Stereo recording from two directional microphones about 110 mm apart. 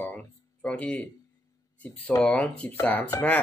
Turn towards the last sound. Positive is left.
turn(degrees=15)  # may be behind; listen again after turning